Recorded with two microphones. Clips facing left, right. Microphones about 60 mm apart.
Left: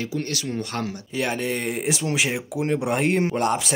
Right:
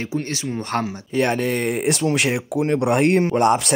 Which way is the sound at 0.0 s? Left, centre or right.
Right.